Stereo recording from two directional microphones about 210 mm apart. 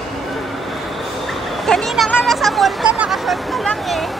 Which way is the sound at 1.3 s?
Centre (ahead or behind).